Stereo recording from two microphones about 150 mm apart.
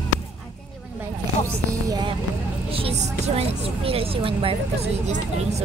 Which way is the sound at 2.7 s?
40° right (ahead or behind).